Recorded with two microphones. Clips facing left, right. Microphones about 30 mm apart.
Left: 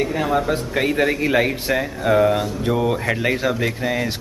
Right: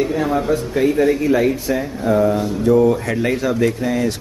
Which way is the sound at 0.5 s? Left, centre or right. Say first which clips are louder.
Right 3 dB; left.